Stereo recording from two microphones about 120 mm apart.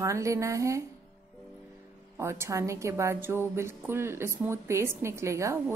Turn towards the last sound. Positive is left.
turn(degrees=-25)  # may be behind; listen again after turning